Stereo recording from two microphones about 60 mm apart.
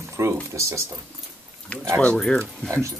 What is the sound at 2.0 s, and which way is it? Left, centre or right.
Speech, centre.